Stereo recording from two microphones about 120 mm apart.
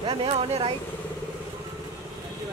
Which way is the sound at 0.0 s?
50° right (ahead or behind).